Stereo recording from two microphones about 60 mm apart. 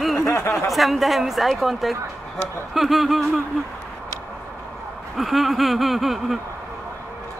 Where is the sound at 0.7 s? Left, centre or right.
Centre.